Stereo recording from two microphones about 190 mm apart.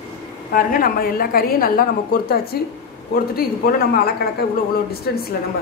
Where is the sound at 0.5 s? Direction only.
45° left (ahead or behind).